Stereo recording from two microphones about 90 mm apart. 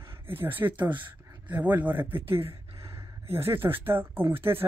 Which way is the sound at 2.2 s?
90° right.